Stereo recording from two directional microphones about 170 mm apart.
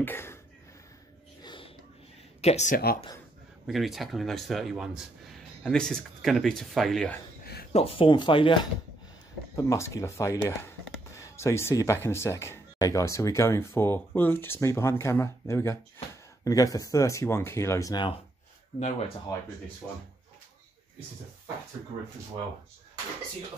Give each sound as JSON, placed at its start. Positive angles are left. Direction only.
{"t": 0.0, "sound": "a sound", "side_deg": 15}
{"t": 1.4, "sound": "a sound", "side_deg": 30}
{"t": 2.4, "sound": "speech", "side_deg": 45}
{"t": 3.6, "sound": "speech", "side_deg": 0}
{"t": 7.7, "sound": "speech", "side_deg": 35}
{"t": 9.6, "sound": "speech", "side_deg": 15}
{"t": 18.8, "sound": "speech", "side_deg": 45}
{"t": 19.3, "sound": "speech", "side_deg": 20}
{"t": 19.8, "sound": "speech", "side_deg": 5}